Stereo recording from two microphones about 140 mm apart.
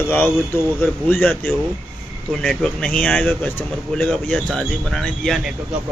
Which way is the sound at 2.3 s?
Centre (ahead or behind).